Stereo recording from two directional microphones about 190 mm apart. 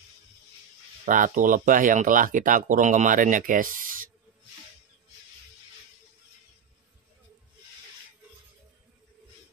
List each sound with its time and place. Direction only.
1.0 s speech: 45° right (ahead or behind)